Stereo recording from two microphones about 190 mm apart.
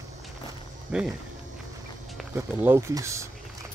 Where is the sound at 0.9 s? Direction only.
5° right (ahead or behind).